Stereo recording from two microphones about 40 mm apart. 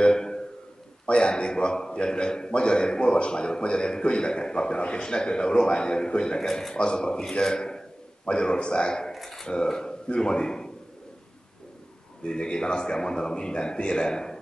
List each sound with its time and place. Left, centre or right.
0.0 s a sound: centre
1.0 s a man's voice: left
6.4 s a man's voice: centre
6.7 s a man's voice: left
9.1 s a sound: centre
9.5 s a man's voice: centre
12.2 s a man's voice: left